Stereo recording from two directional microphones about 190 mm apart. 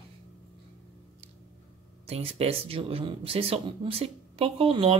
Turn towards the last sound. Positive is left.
turn(degrees=-30)  # may be behind; listen again after turning